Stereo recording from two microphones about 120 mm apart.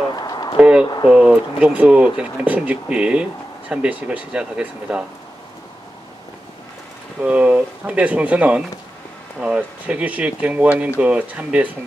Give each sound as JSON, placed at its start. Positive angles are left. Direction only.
{"t": 0.1, "sound": "a sound", "side_deg": 35}
{"t": 0.6, "sound": "speech", "side_deg": -10}
{"t": 7.2, "sound": "speech", "side_deg": -10}